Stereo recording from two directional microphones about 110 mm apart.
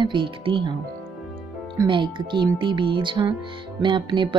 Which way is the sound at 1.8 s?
45° right (ahead or behind).